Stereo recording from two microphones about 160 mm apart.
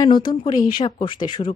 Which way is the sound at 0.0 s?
25° left (ahead or behind).